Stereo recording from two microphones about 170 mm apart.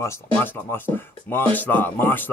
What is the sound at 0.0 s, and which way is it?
Speech, 10° left (ahead or behind).